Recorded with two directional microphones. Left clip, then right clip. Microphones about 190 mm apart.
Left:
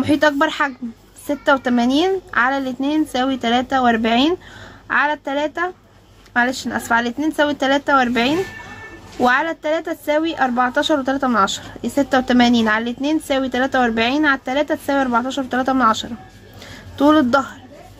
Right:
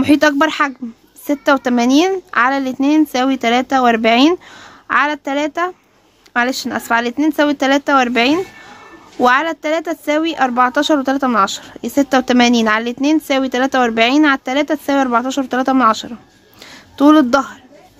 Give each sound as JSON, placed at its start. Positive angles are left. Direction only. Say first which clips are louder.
{"t": 0.0, "sound": "speech", "louder": "right 3 dB", "side_deg": -45}